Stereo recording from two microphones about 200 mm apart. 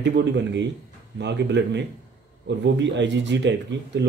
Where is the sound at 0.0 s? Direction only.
60° right (ahead or behind).